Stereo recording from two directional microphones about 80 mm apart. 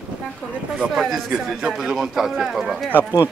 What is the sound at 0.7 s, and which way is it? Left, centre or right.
Speech, centre.